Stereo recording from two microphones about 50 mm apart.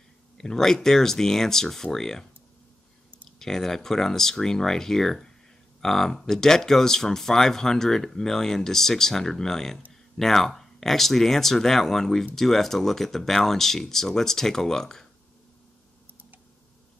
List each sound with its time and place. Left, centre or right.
0.4 s speech: centre
3.3 s speech: centre